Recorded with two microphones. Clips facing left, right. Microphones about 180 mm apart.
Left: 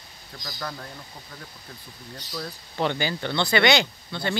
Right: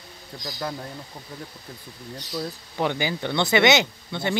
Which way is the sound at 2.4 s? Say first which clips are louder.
Right 1 dB; 10° right (ahead or behind).